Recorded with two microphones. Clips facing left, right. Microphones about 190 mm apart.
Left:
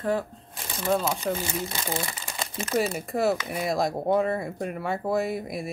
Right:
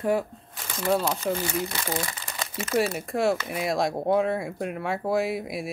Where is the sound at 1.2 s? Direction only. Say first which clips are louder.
Right 2 dB; 5° right (ahead or behind).